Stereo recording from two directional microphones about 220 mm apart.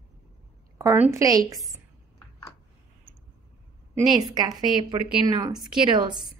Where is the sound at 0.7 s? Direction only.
10° right (ahead or behind).